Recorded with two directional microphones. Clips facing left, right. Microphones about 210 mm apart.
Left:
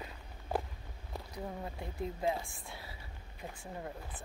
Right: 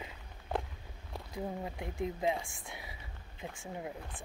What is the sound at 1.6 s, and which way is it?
Speech, 15° right (ahead or behind).